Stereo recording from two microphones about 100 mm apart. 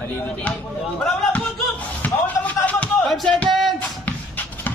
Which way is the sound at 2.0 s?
15° left (ahead or behind).